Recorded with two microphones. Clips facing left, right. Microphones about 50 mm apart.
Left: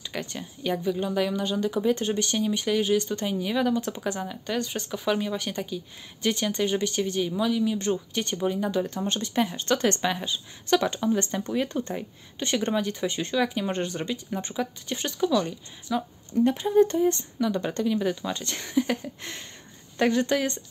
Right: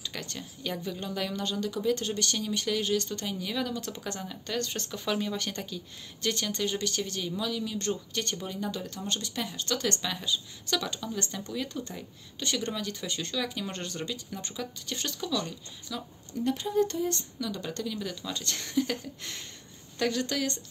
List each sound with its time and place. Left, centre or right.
0.0 s speech: centre